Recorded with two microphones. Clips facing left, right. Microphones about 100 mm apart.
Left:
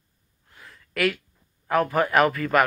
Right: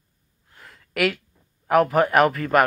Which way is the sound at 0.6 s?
55° right (ahead or behind).